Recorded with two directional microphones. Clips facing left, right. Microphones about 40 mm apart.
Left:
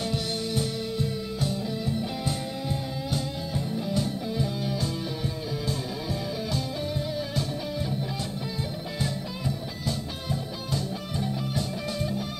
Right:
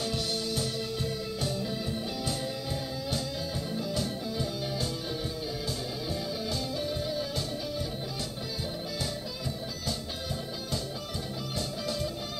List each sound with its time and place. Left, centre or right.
0.0 s music: left
8.9 s music: left